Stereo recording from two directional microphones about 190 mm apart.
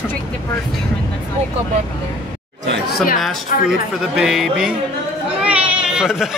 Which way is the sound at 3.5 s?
45° left (ahead or behind).